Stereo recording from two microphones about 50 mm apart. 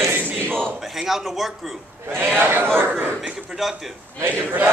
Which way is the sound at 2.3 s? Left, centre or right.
Right.